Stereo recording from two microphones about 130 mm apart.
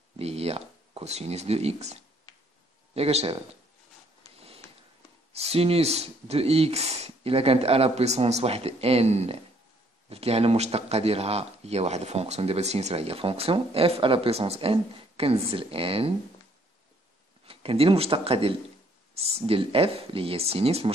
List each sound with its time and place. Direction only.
0.2 s speech: 50° right (ahead or behind)
5.3 s speech: 50° right (ahead or behind)
17.5 s speech: 45° right (ahead or behind)